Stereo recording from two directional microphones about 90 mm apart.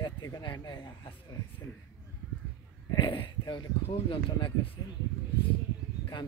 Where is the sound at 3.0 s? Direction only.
70° left (ahead or behind).